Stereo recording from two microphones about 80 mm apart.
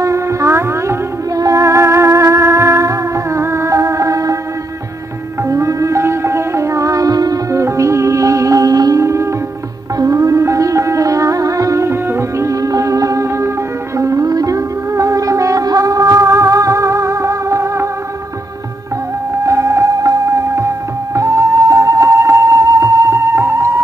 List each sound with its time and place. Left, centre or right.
0.0 s music: right
5.5 s music: right
7.6 s music: right
19.4 s music: right